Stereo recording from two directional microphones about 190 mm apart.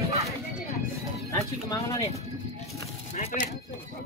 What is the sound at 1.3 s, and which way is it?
Speech, 15° left (ahead or behind).